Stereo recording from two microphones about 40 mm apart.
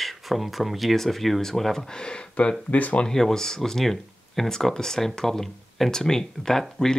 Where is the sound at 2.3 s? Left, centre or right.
Left.